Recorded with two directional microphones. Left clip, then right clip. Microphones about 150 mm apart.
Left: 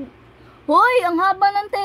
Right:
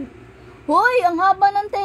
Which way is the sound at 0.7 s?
25° left (ahead or behind).